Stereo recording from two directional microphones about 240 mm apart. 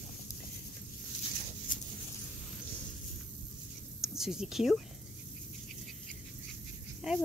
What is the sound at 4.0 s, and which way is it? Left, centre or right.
Speech, centre.